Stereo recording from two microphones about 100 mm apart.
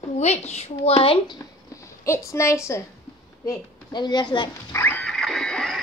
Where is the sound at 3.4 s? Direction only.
45° left (ahead or behind).